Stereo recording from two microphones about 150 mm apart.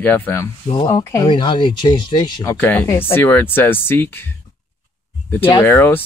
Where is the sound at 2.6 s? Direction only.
10° left (ahead or behind).